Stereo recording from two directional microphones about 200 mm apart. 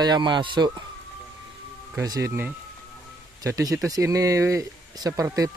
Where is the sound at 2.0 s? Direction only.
15° right (ahead or behind).